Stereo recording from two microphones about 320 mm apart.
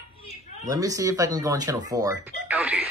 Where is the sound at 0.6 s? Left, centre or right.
Centre.